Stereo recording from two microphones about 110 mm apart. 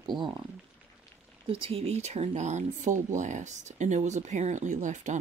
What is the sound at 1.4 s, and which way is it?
Speech, 55° right (ahead or behind).